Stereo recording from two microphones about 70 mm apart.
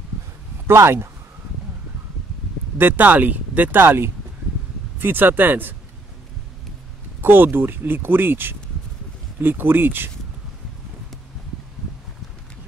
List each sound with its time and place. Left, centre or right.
0.7 s speech: right
2.8 s speech: right
7.2 s speech: right